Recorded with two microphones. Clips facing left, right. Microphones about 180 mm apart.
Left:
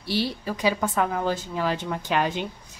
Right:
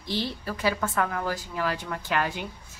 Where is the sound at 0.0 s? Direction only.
10° left (ahead or behind).